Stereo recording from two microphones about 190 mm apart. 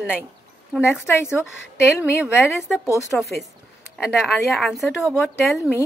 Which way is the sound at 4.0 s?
Centre (ahead or behind).